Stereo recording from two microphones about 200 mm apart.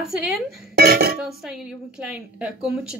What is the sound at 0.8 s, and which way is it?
Speech, 50° right (ahead or behind).